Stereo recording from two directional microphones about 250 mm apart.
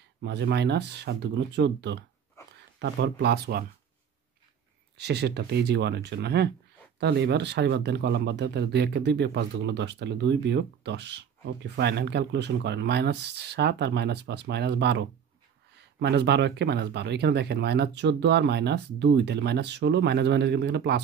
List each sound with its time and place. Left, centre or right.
0.2 s speech: right
2.4 s a sound: centre
2.8 s speech: right
4.9 s speech: right